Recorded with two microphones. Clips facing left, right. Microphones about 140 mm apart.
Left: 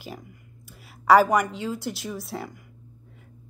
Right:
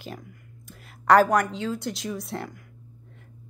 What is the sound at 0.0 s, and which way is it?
A woman's voice, 5° left (ahead or behind).